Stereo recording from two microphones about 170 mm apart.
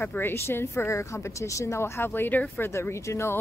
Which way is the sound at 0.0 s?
10° left (ahead or behind).